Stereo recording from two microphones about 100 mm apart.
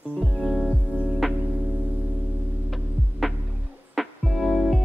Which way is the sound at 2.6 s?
Centre (ahead or behind).